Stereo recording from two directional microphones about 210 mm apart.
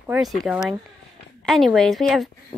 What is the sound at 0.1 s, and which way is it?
A child's voice, centre (ahead or behind).